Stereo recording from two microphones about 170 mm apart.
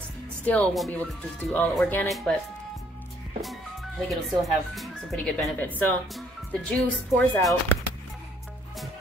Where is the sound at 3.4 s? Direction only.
Centre (ahead or behind).